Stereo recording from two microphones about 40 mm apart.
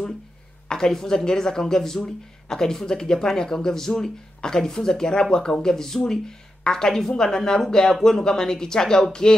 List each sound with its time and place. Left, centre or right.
0.7 s speech: centre